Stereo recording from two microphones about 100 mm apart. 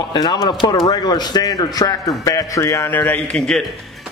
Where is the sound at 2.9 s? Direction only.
15° left (ahead or behind).